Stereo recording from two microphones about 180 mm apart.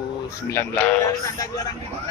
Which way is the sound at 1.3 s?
15° left (ahead or behind).